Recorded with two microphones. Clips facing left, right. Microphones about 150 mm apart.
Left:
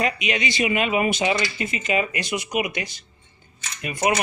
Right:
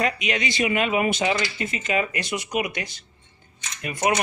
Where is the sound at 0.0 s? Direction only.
10° left (ahead or behind).